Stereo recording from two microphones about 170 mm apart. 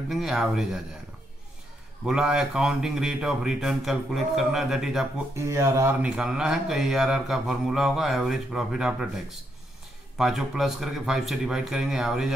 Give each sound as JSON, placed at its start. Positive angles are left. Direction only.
{"t": 0.1, "sound": "speech", "side_deg": 0}
{"t": 2.0, "sound": "speech", "side_deg": -5}
{"t": 5.3, "sound": "speech", "side_deg": -15}
{"t": 6.0, "sound": "speech", "side_deg": -5}
{"t": 10.1, "sound": "speech", "side_deg": 0}